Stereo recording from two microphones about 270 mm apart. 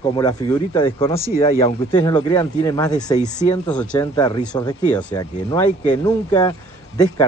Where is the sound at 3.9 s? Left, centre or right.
Centre.